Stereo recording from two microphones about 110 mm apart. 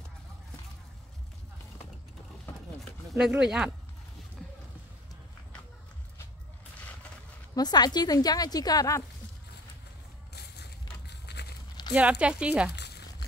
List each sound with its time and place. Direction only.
3.1 s speech: 5° right (ahead or behind)
7.5 s a woman's voice: 40° left (ahead or behind)
11.9 s speech: 10° right (ahead or behind)